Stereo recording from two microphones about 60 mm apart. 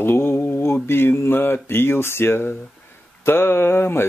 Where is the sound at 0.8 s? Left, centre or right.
Left.